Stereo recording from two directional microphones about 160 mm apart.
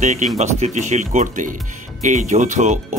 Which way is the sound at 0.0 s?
50° right (ahead or behind).